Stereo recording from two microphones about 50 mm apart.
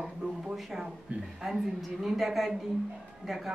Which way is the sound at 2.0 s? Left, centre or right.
Centre.